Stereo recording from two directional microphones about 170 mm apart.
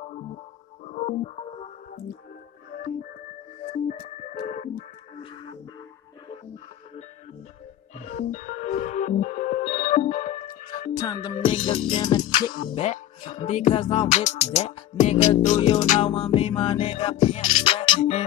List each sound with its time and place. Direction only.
0.9 s music: 45° left (ahead or behind)
3.7 s music: 45° left (ahead or behind)
5.1 s music: 30° left (ahead or behind)
8.0 s music: 45° left (ahead or behind)
11.0 s music: 25° left (ahead or behind)
12.6 s music: 40° left (ahead or behind)